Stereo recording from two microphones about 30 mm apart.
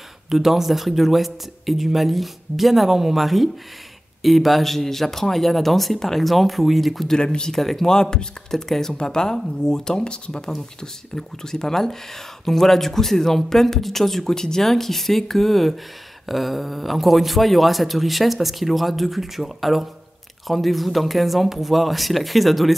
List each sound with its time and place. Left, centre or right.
0.3 s a man's voice: centre
7.8 s speech: centre
8.9 s speech: left
10.8 s a man's voice: centre